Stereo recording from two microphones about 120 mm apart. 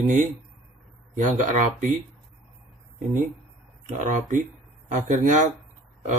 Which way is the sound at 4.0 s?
90° right.